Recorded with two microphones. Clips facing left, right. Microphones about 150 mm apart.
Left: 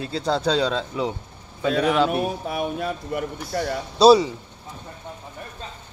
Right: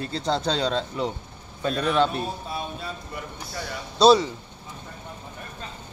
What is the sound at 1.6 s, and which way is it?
Speech, 85° left.